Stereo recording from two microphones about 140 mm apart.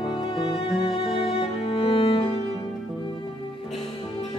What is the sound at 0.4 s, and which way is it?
Music, centre (ahead or behind).